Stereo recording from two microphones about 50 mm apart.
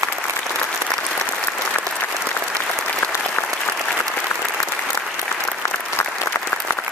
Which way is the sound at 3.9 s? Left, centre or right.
Left.